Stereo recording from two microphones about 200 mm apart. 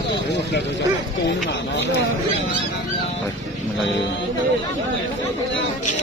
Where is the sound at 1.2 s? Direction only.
60° left (ahead or behind).